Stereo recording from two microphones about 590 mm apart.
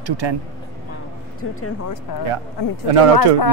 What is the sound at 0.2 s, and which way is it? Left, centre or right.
Speech, right.